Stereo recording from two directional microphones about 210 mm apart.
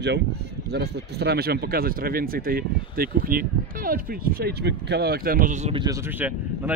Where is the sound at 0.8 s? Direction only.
50° right (ahead or behind).